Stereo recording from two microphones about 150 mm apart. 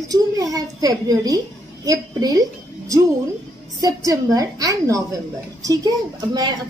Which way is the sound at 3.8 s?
20° right (ahead or behind).